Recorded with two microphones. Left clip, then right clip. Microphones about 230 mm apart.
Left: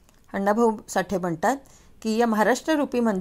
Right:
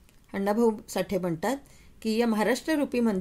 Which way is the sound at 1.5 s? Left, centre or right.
Centre.